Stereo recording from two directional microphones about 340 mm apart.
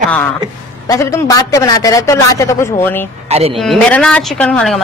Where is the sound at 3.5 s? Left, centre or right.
Centre.